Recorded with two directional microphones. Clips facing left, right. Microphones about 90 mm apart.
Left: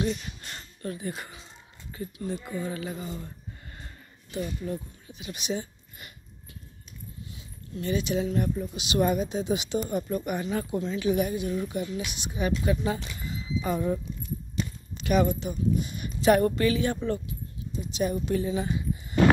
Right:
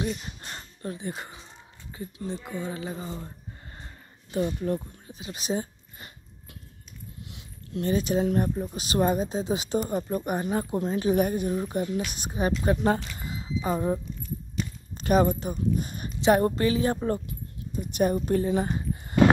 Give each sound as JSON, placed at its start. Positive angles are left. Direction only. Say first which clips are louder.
{"t": 0.2, "sound": "speech", "louder": "right 1 dB", "side_deg": -25}
{"t": 4.6, "sound": "a woman's voice", "louder": "right 5 dB", "side_deg": -50}
{"t": 5.0, "sound": "speech", "louder": "right 1 dB", "side_deg": -30}
{"t": 7.2, "sound": "dog", "louder": "even", "side_deg": -70}
{"t": 7.8, "sound": "a woman's voice", "louder": "right 3 dB", "side_deg": -40}
{"t": 13.2, "sound": "a sound", "louder": "even", "side_deg": -40}
{"t": 13.6, "sound": "speech", "louder": "right 1 dB", "side_deg": -30}
{"t": 16.2, "sound": "speech", "louder": "even", "side_deg": -25}